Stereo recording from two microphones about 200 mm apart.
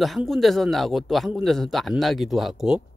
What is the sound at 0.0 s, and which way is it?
Speech, centre (ahead or behind).